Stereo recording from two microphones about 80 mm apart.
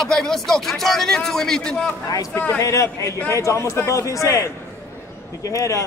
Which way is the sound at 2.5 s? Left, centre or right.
Left.